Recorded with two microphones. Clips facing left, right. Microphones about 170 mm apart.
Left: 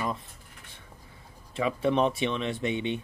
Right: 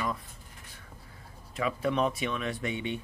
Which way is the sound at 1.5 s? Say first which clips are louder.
Left 3 dB; 25° left (ahead or behind).